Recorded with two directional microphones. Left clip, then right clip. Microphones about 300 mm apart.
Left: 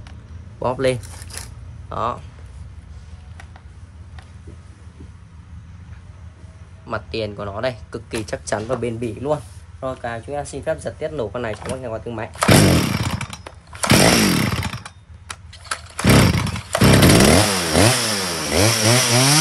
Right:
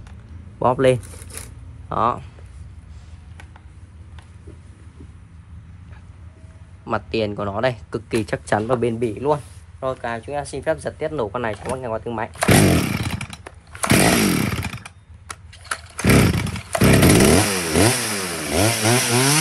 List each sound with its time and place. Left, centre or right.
0.6 s speech: centre
6.9 s speech: right
12.3 s chainsaw: centre